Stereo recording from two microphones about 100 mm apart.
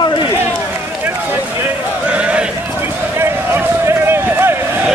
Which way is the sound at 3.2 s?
25° right (ahead or behind).